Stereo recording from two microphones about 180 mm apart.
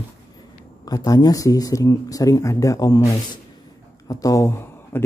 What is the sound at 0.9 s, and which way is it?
Speech, 20° left (ahead or behind).